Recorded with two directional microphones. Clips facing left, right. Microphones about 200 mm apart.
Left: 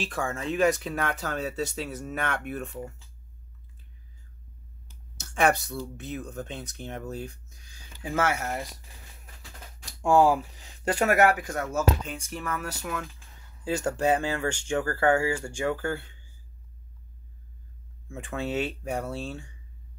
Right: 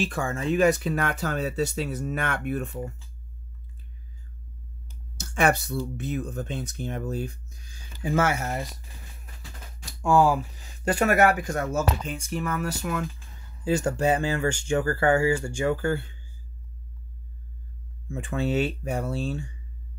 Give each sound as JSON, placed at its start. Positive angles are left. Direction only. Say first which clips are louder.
{"t": 0.0, "sound": "speech", "louder": "right 3 dB", "side_deg": -5}
{"t": 5.1, "sound": "speech", "louder": "right 1 dB", "side_deg": -5}
{"t": 10.0, "sound": "speech", "louder": "even", "side_deg": 25}
{"t": 11.6, "sound": "speech", "louder": "left 2 dB", "side_deg": -10}
{"t": 18.1, "sound": "speech", "louder": "right 4 dB", "side_deg": 0}